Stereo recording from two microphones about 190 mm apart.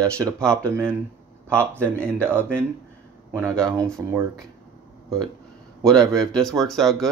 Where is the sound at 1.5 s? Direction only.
10° right (ahead or behind).